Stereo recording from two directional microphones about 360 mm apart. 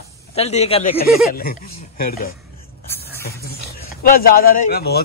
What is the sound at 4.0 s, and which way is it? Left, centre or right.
A man's voice, left.